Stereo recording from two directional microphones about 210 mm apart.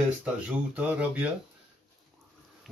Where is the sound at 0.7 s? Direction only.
5° right (ahead or behind).